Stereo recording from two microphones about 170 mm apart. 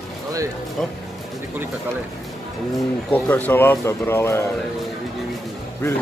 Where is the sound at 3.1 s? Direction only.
10° left (ahead or behind).